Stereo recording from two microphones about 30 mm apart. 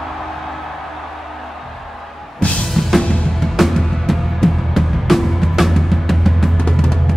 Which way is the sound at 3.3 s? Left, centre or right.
Centre.